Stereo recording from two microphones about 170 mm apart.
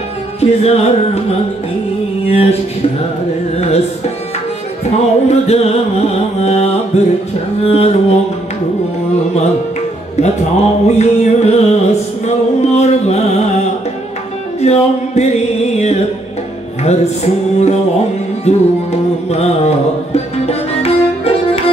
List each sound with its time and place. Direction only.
0.4 s music: 40° left (ahead or behind)
3.5 s music: 40° left (ahead or behind)
4.8 s music: 40° left (ahead or behind)
10.2 s music: 40° left (ahead or behind)
14.6 s music: 40° left (ahead or behind)